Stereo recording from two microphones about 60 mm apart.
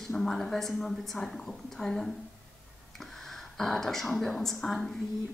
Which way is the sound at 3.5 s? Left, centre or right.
Centre.